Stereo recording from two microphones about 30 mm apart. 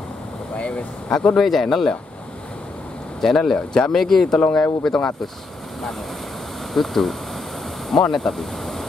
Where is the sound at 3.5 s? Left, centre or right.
Left.